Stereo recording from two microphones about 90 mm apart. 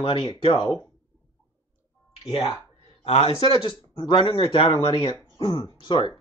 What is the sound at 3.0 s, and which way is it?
Speech, 80° left.